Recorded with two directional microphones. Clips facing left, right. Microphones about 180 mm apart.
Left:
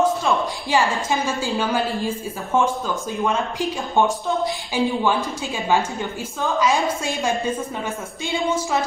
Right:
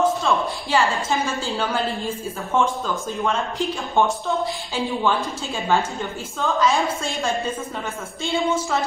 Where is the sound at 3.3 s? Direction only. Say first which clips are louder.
Even; 15° left (ahead or behind).